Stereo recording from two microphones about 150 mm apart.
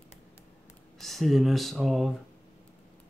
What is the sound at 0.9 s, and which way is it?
Speech, centre (ahead or behind).